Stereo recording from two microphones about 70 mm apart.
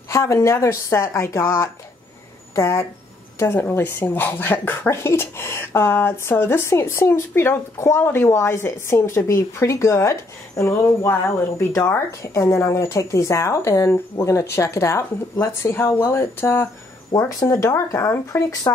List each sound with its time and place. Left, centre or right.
0.1 s speech: left
17.1 s speech: left
17.5 s speech: left